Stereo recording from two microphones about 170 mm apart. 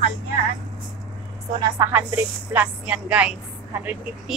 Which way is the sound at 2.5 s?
10° right (ahead or behind).